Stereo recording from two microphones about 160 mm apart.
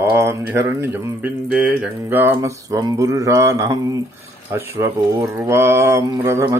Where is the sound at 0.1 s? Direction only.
15° right (ahead or behind).